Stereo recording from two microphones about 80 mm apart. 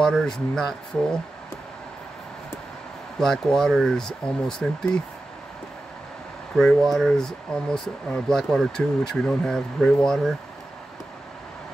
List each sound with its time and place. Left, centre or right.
0.2 s speech: centre
3.2 s speech: centre
6.5 s speech: centre